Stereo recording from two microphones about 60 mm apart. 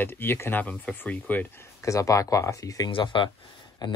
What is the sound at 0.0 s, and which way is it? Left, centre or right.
Speech, left.